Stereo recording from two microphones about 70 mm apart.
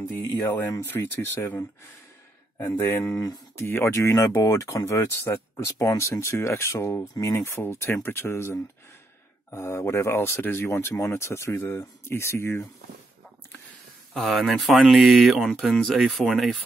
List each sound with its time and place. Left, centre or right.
0.1 s speech: left
2.7 s speech: left
4.1 s speech: left
7.2 s speech: left
7.4 s speech: left
14.1 s speech: centre